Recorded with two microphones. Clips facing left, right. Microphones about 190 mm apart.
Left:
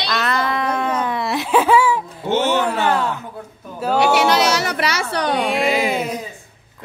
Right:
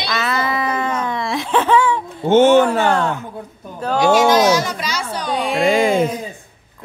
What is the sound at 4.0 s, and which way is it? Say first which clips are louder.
Speech: right 3 dB; 70° left (ahead or behind).